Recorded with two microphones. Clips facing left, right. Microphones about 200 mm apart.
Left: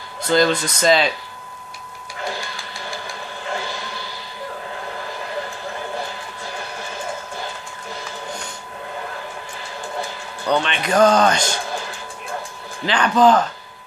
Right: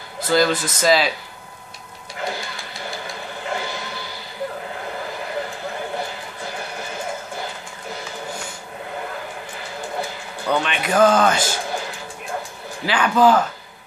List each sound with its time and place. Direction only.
0.2 s speech: 5° right (ahead or behind)
10.5 s speech: 5° right (ahead or behind)
12.8 s a man's voice: 10° right (ahead or behind)